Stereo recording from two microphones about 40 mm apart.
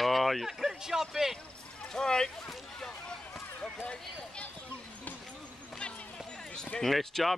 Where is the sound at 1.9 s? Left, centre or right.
Centre.